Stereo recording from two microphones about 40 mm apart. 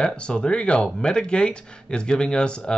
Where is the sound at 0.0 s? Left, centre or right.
Left.